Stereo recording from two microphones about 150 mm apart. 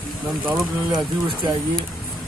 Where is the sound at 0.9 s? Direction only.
30° right (ahead or behind).